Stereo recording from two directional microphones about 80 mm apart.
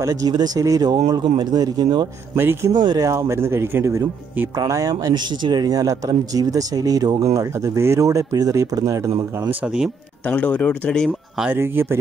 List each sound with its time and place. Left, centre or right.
0.0 s a man's voice: right
2.3 s speech: right
2.7 s speech: right
3.0 s speech: right
4.6 s a man's voice: right
7.5 s speech: right
10.2 s speech: centre
11.5 s speech: right